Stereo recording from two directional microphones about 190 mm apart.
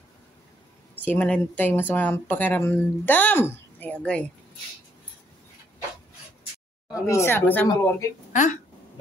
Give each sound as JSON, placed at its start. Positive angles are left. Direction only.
{"t": 1.0, "sound": "speech", "side_deg": 10}
{"t": 6.9, "sound": "speech", "side_deg": 15}
{"t": 8.3, "sound": "a woman's voice", "side_deg": 40}